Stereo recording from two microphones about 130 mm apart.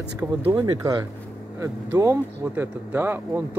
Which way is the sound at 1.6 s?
25° right (ahead or behind).